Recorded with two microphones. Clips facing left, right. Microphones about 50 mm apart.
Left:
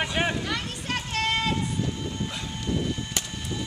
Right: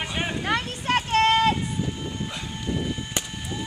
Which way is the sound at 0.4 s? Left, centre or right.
Right.